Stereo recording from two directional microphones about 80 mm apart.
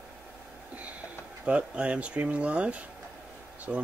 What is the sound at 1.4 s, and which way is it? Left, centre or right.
Speech, centre.